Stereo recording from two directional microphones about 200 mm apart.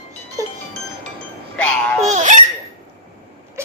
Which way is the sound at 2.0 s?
35° right (ahead or behind).